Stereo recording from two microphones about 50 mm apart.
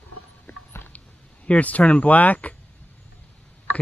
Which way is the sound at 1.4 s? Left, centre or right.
Left.